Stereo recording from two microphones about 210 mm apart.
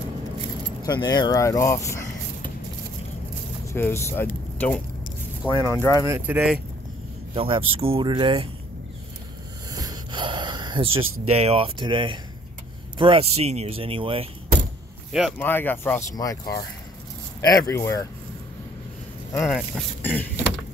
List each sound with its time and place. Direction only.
0.8 s speech: 20° left (ahead or behind)
3.6 s speech: 10° left (ahead or behind)
6.0 s speech: 10° right (ahead or behind)
7.3 s speech: 25° right (ahead or behind)
9.8 s gasp: 20° right (ahead or behind)
11.0 s speech: 80° right
11.3 s speech: 30° right (ahead or behind)
15.1 s speech: 5° left (ahead or behind)
19.3 s speech: 5° left (ahead or behind)